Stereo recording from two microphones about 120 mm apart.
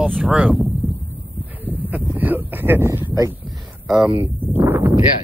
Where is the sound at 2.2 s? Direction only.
15° right (ahead or behind).